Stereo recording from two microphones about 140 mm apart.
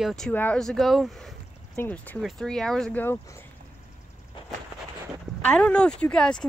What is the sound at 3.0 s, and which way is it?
Speech, 15° left (ahead or behind).